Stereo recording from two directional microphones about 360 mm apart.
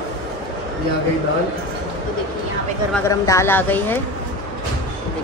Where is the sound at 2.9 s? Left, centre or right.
Centre.